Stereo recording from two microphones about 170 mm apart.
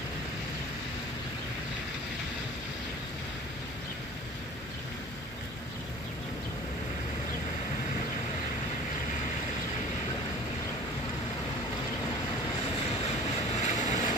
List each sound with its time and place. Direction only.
13.6 s vehicle: 45° left (ahead or behind)